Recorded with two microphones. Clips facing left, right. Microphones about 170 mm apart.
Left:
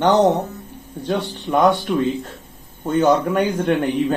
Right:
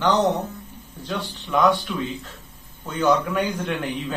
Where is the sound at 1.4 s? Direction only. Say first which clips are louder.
Left 3 dB; 50° left (ahead or behind).